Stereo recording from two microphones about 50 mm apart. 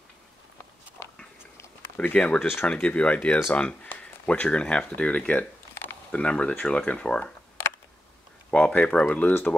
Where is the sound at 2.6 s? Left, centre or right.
Left.